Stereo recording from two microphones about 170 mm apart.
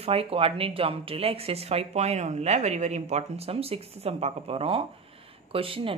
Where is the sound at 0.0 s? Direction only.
35° right (ahead or behind).